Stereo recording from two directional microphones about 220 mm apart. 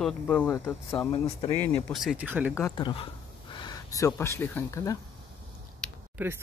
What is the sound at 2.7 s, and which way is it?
Speech, 20° left (ahead or behind).